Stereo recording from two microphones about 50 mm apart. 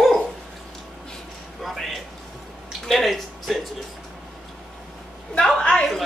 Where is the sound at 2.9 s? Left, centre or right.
Centre.